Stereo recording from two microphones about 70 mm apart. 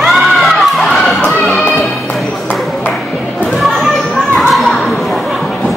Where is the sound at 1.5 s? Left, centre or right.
Centre.